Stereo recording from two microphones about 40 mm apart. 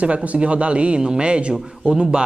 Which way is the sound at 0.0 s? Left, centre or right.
Right.